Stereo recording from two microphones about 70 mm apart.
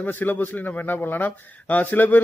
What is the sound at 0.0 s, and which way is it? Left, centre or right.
A man's voice, left.